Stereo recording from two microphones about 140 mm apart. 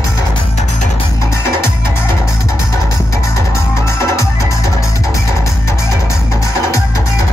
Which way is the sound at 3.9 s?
20° left (ahead or behind).